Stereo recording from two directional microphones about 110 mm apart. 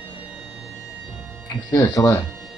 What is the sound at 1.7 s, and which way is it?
Speech, 30° left (ahead or behind).